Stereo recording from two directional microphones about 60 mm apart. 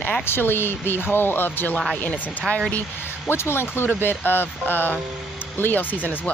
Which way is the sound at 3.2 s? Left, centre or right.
Left.